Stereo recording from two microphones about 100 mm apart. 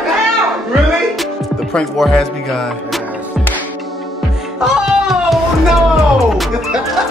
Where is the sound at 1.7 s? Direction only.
5° left (ahead or behind).